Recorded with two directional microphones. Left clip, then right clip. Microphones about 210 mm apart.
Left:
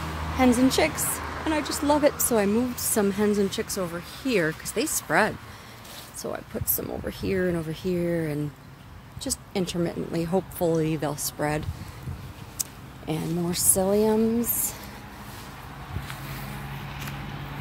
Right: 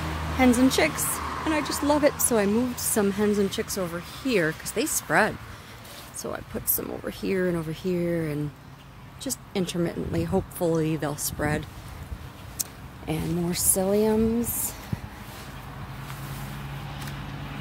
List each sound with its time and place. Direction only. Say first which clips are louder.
0.6 s a woman's voice: even; centre (ahead or behind)
1.0 s a sound: right 2 dB; 45° right (ahead or behind)
1.4 s a woman's voice: even; 5° left (ahead or behind)